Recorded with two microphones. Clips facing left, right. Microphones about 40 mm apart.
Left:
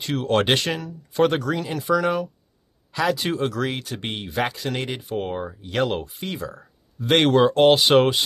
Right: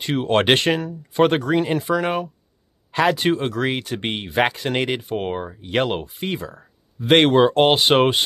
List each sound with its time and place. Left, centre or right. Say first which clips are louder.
0.0 s speech: right 2 dB; right
3.3 s speech: right 2 dB; right
5.0 s speech: right 2 dB; right